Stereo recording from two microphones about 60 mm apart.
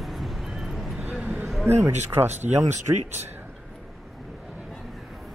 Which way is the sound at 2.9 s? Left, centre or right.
Right.